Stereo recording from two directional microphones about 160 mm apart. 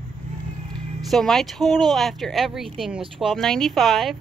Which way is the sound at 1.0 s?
Centre (ahead or behind).